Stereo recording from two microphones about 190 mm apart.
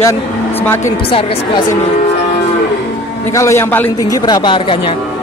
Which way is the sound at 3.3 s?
15° left (ahead or behind).